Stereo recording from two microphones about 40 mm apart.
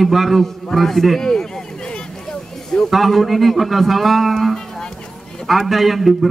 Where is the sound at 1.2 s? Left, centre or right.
Centre.